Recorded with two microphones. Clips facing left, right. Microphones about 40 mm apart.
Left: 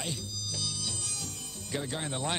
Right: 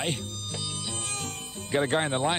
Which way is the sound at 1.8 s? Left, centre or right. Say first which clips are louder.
Right 10 dB; right.